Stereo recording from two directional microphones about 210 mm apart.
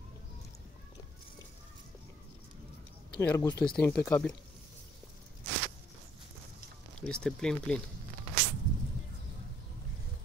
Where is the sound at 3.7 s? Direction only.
5° left (ahead or behind).